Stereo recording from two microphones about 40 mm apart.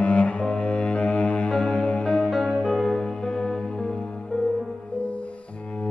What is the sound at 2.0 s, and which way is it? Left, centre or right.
Music, left.